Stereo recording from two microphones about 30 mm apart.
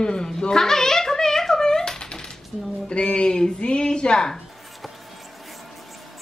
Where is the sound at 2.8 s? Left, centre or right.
Left.